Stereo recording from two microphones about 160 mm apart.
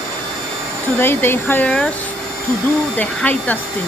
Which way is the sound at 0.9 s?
15° left (ahead or behind).